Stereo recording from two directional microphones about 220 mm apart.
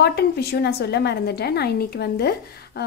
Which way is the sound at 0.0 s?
50° left (ahead or behind).